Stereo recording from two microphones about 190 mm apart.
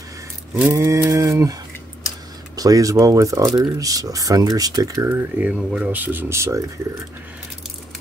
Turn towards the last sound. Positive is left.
turn(degrees=-15)  # may be behind; listen again after turning